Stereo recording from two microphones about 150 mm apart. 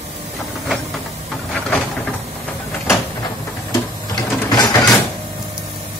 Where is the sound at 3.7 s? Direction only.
25° left (ahead or behind).